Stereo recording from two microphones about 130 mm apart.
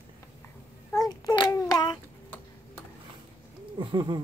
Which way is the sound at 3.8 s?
40° right (ahead or behind).